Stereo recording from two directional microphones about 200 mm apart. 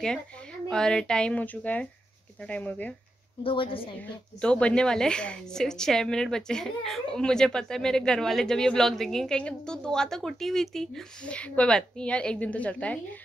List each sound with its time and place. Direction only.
0.7 s a woman's voice: 5° left (ahead or behind)
3.4 s a woman's voice: 25° left (ahead or behind)
4.4 s a woman's voice: 5° left (ahead or behind)